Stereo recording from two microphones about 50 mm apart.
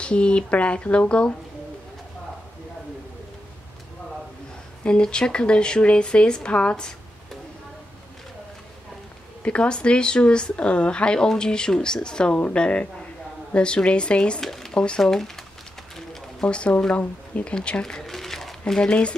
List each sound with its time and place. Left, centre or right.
0.0 s speech: left
4.8 s speech: centre
9.4 s speech: left
14.4 s speech: centre
16.3 s speech: left
18.0 s a sound: centre
18.7 s speech: centre